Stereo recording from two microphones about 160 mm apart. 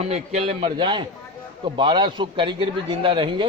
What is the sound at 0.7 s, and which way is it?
A man's voice, 30° right (ahead or behind).